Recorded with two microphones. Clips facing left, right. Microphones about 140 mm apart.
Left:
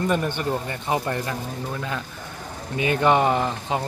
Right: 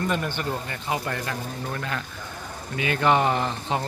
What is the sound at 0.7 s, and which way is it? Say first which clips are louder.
Speech: left 4 dB; 25° left (ahead or behind).